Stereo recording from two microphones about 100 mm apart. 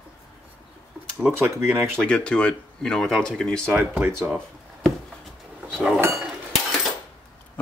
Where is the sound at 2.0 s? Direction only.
10° left (ahead or behind).